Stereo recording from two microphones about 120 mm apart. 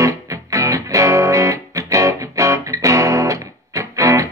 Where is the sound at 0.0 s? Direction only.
25° right (ahead or behind).